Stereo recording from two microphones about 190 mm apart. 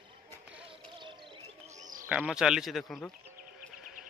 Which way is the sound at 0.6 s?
25° right (ahead or behind).